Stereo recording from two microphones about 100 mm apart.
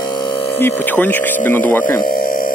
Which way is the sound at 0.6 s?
20° left (ahead or behind).